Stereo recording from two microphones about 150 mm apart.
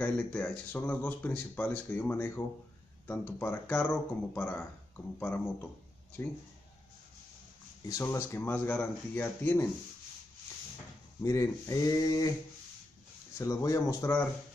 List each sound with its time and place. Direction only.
0.0 s speech: 10° left (ahead or behind)
7.8 s speech: 20° left (ahead or behind)
11.2 s speech: 20° left (ahead or behind)
13.4 s speech: 20° left (ahead or behind)